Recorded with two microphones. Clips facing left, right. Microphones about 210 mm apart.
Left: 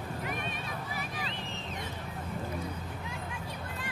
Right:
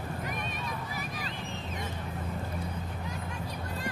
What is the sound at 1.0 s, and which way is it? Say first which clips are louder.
Boat: even; 45° right (ahead or behind).